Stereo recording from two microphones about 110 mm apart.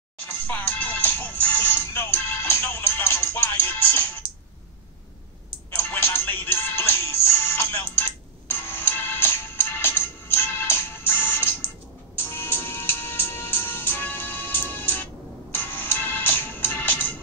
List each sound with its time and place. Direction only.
0.3 s music: 15° left (ahead or behind)
4.2 s a sound: 55° right (ahead or behind)
5.8 s music: 20° left (ahead or behind)